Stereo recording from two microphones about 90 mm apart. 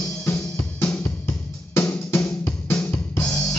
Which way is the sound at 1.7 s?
30° left (ahead or behind).